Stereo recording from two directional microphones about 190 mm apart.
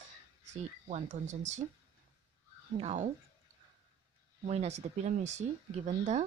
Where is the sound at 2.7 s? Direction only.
35° right (ahead or behind).